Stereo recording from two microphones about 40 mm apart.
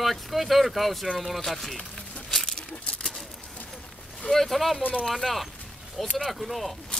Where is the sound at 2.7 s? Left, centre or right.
Left.